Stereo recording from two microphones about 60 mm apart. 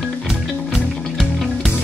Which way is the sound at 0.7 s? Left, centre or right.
Centre.